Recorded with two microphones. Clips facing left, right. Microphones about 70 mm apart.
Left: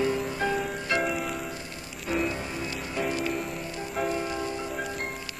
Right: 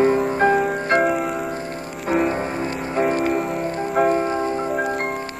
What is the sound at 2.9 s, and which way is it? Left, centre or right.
Music, right.